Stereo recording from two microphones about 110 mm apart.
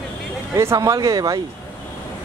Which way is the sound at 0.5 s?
30° right (ahead or behind).